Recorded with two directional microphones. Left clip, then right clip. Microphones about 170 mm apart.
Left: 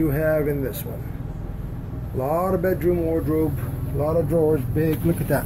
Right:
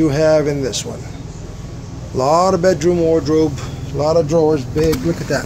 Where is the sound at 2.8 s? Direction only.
45° right (ahead or behind).